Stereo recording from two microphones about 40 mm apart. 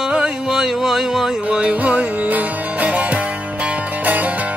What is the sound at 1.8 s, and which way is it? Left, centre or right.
Music, right.